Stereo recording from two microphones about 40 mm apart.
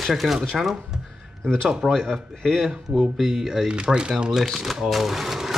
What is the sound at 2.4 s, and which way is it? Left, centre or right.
Speech, centre.